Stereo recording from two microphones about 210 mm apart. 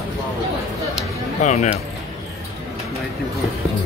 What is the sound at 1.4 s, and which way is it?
Speech, 35° left (ahead or behind).